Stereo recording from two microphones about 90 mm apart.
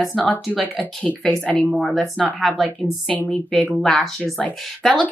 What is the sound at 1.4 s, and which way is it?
Speech, 15° left (ahead or behind).